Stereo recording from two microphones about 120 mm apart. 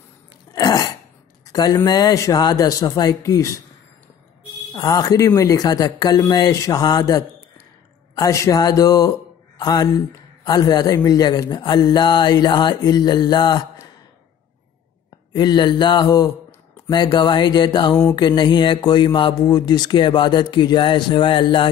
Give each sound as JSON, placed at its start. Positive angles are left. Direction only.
{"t": 0.5, "sound": "cough", "side_deg": 30}
{"t": 1.5, "sound": "a man's voice", "side_deg": 30}
{"t": 4.7, "sound": "a man's voice", "side_deg": 30}
{"t": 15.3, "sound": "a man's voice", "side_deg": 35}